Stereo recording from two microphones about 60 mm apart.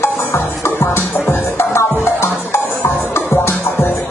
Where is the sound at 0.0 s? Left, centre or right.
Left.